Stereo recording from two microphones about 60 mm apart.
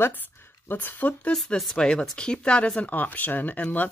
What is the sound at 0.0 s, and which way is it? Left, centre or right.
Speech, left.